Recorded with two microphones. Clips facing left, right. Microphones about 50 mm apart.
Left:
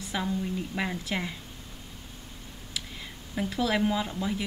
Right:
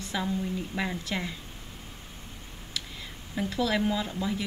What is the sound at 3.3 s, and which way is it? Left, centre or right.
Speech, centre.